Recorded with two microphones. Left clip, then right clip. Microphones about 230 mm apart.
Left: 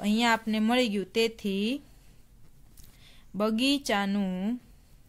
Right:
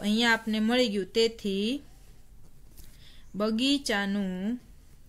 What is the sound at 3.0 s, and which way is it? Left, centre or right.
Speech, left.